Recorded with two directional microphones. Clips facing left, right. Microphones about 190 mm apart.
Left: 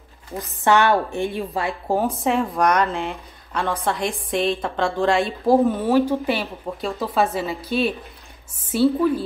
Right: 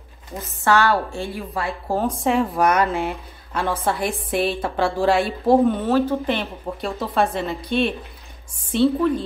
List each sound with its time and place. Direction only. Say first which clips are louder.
0.4 s a woman's voice: left 1 dB; 20° left (ahead or behind)
2.0 s a woman's voice: right 1 dB; centre (ahead or behind)
6.6 s a woman's voice: even; centre (ahead or behind)